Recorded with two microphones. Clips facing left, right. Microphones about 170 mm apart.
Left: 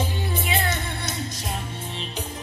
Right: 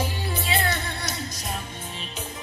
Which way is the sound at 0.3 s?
20° left (ahead or behind).